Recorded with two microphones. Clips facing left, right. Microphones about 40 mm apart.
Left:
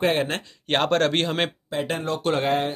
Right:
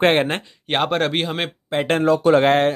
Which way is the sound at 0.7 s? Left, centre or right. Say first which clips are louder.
Right 1 dB; centre.